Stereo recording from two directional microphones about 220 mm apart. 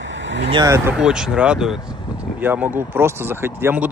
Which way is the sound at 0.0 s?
55° right (ahead or behind).